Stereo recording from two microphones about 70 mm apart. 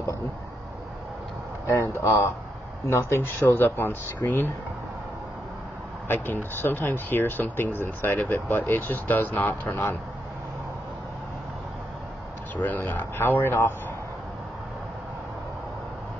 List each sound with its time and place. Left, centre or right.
2.0 s speech: left
6.0 s speech: left
12.5 s speech: left